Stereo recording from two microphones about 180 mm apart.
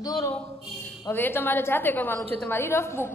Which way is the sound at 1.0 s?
10° left (ahead or behind).